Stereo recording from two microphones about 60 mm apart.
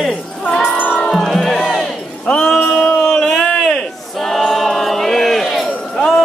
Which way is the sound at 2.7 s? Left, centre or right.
Centre.